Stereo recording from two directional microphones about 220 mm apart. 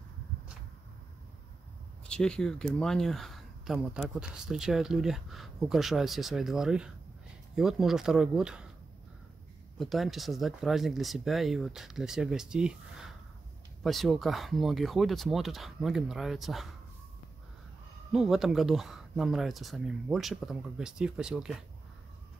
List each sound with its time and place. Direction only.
2.0 s speech: 5° left (ahead or behind)
9.8 s speech: centre (ahead or behind)
18.1 s speech: centre (ahead or behind)